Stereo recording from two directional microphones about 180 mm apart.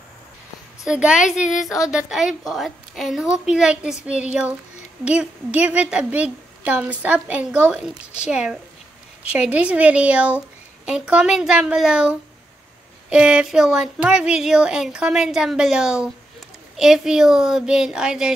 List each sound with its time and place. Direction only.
0.8 s speech: 5° right (ahead or behind)
1.4 s speech: 45° left (ahead or behind)
1.7 s a woman's voice: 5° right (ahead or behind)